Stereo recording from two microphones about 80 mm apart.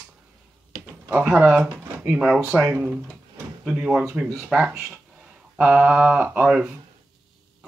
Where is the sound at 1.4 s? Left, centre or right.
Right.